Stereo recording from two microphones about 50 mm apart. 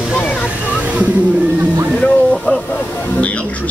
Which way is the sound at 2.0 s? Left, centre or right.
Left.